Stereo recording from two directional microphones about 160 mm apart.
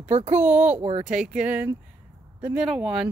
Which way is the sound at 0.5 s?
10° right (ahead or behind).